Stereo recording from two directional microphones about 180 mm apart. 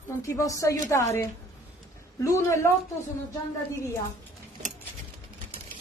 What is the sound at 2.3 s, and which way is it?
Speech, 15° left (ahead or behind).